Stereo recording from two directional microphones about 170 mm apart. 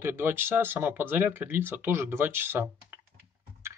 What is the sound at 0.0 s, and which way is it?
Speech, 15° right (ahead or behind).